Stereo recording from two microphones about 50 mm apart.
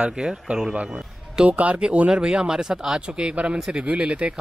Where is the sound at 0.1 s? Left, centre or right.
Centre.